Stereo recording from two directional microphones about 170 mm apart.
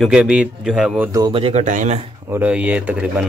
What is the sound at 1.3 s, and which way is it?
Speech, 35° right (ahead or behind).